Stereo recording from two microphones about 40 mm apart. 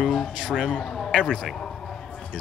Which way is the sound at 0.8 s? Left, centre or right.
Centre.